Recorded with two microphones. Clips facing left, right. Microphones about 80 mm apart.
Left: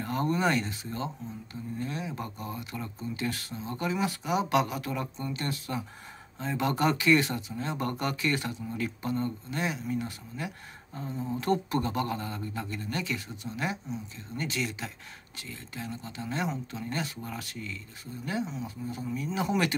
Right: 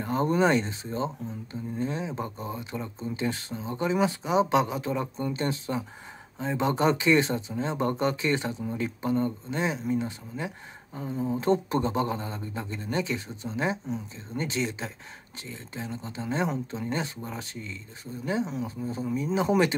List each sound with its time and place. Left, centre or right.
0.0 s speech: right